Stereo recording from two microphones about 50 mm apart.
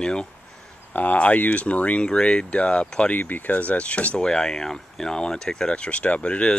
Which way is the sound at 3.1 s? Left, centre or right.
Left.